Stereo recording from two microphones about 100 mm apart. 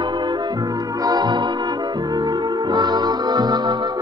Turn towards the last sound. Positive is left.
turn(degrees=-45)  # may be behind; listen again after turning